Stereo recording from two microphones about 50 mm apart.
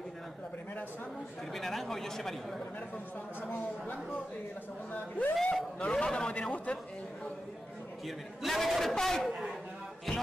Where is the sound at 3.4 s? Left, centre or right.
Left.